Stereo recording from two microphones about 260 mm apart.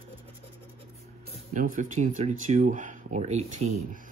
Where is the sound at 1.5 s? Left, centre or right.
Right.